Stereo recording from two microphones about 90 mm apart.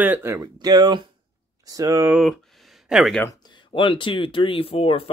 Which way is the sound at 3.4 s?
65° left (ahead or behind).